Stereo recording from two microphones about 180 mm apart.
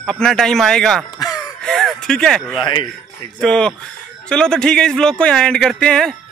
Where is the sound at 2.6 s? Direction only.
25° left (ahead or behind).